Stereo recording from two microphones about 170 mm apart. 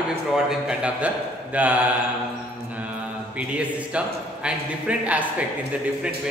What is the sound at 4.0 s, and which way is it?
A man's voice, 5° right (ahead or behind).